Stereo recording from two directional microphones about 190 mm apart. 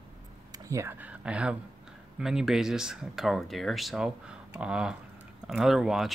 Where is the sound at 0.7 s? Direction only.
15° right (ahead or behind).